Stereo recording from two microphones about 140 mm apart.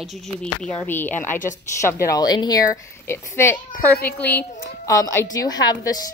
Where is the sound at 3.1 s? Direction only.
20° left (ahead or behind).